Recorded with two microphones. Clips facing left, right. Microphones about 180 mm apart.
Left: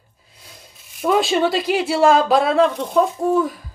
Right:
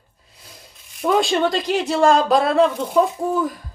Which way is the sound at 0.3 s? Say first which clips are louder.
Even; centre (ahead or behind).